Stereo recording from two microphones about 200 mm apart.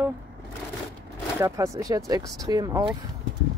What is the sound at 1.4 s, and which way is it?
Speech, 15° right (ahead or behind).